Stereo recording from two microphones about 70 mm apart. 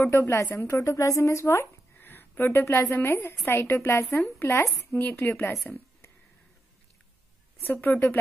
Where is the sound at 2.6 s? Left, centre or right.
Left.